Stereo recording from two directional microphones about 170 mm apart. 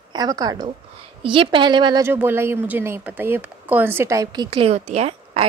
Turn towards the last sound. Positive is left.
turn(degrees=-40)  # may be behind; listen again after turning